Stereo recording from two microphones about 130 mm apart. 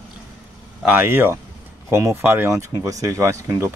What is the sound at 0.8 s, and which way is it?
Speech, 15° right (ahead or behind).